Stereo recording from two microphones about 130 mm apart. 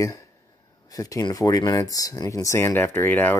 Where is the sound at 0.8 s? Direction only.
25° left (ahead or behind).